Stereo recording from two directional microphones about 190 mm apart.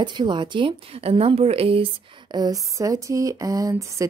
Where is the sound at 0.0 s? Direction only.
25° right (ahead or behind).